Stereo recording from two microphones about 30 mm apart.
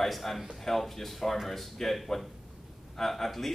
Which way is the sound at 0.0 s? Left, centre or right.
Centre.